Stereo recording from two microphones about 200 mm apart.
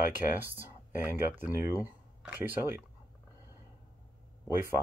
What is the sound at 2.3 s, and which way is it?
Speech, 10° right (ahead or behind).